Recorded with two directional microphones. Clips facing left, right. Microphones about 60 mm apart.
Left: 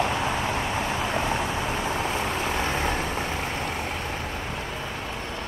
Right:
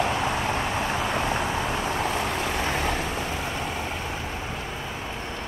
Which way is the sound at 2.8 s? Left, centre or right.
Left.